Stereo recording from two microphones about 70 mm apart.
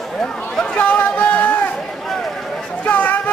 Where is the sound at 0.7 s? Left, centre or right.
Left.